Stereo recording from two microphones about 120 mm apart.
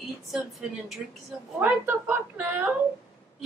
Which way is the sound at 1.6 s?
15° right (ahead or behind).